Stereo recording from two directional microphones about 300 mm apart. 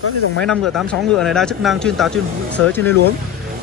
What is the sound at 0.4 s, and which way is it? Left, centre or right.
Speech, centre.